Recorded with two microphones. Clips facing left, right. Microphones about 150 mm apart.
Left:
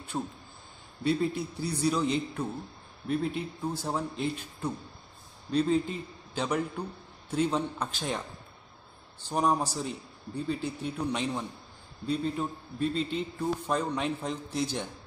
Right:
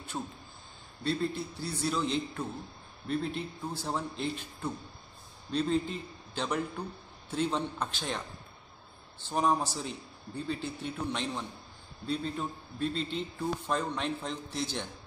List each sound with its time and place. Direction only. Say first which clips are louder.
0.1 s a man's voice: left 4 dB; 10° left (ahead or behind)
9.3 s a man's voice: left 1 dB; centre (ahead or behind)